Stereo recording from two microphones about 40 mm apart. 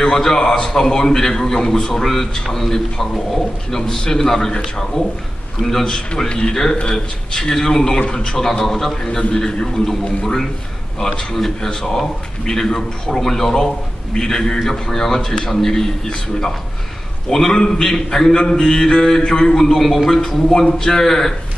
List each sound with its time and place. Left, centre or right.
0.0 s a man's voice: centre
3.7 s a man's voice: centre
9.3 s a man's voice: centre
11.0 s a man's voice: centre
17.3 s a man's voice: centre
19.6 s a man's voice: centre